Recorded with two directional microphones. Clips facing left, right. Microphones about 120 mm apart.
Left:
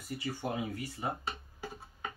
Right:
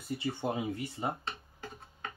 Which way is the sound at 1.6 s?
10° left (ahead or behind).